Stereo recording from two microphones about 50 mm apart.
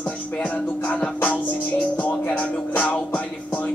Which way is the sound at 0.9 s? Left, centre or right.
Left.